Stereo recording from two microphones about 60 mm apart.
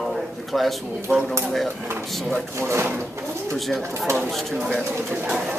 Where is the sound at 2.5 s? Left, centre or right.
Right.